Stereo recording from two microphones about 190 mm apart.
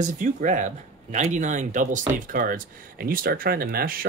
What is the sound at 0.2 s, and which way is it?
Speech, 40° right (ahead or behind).